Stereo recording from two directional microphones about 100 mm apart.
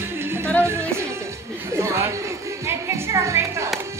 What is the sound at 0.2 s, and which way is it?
Music, 25° right (ahead or behind).